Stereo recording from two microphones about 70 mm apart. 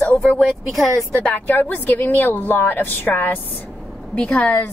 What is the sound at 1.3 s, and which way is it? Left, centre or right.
A woman's voice, left.